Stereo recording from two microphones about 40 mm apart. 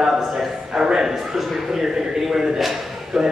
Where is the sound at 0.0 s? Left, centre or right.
Centre.